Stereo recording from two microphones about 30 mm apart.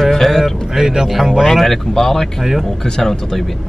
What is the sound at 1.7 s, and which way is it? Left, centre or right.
Speech, centre.